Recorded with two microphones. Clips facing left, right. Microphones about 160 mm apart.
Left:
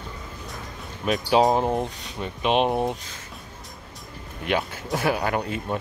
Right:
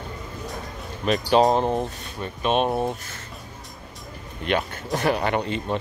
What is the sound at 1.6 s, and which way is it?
Speech, 15° left (ahead or behind).